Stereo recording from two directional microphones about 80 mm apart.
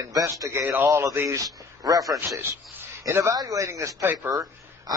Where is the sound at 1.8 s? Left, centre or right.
Right.